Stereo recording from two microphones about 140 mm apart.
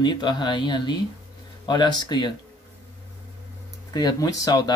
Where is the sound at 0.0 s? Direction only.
35° left (ahead or behind).